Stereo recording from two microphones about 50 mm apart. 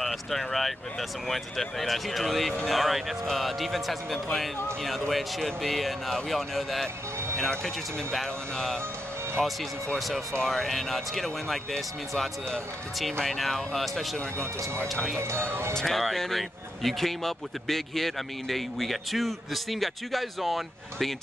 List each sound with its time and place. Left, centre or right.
0.0 s speech: centre
15.1 s speech: right
15.7 s speech: centre